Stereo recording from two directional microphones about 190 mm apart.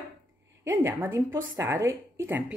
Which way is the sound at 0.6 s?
15° right (ahead or behind).